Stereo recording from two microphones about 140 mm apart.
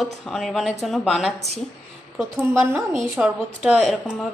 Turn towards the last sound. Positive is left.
turn(degrees=0)  # may be behind; listen again after turning